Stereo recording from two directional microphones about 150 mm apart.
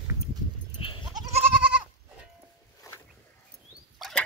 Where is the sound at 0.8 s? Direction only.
40° left (ahead or behind).